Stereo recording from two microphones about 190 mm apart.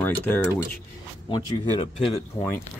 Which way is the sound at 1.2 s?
25° left (ahead or behind).